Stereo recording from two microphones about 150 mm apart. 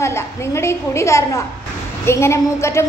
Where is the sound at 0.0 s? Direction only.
20° left (ahead or behind).